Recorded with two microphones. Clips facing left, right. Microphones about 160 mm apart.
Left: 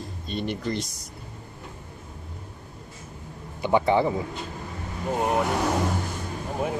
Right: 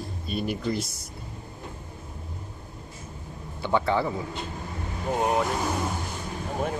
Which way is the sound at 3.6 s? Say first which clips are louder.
Left 4 dB; 15° left (ahead or behind).